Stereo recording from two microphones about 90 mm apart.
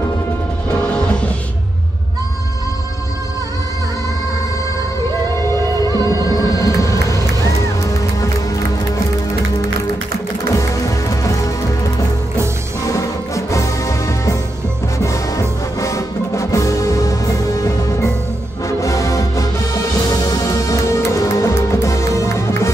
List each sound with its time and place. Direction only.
5.9 s music: 40° left (ahead or behind)
6.3 s vehicle: 40° left (ahead or behind)
10.5 s music: 35° left (ahead or behind)
12.8 s music: 35° left (ahead or behind)